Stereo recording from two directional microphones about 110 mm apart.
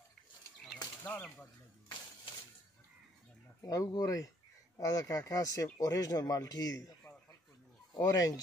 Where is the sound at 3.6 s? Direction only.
35° left (ahead or behind).